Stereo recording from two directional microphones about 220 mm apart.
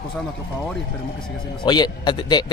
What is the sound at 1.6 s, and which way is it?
Speech, 20° left (ahead or behind).